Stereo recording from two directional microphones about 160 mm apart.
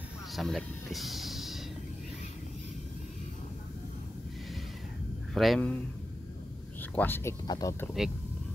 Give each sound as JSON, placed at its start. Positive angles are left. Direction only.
{"t": 0.4, "sound": "speech", "side_deg": 0}
{"t": 5.3, "sound": "speech", "side_deg": 0}
{"t": 6.8, "sound": "speech", "side_deg": 10}
{"t": 7.4, "sound": "speech", "side_deg": 25}
{"t": 8.0, "sound": "speech", "side_deg": 0}